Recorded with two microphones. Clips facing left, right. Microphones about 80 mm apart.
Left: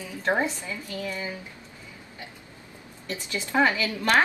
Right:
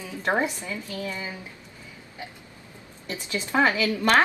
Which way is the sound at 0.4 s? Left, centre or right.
Right.